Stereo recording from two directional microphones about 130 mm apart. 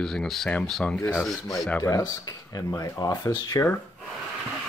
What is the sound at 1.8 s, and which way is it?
Speech, 25° left (ahead or behind).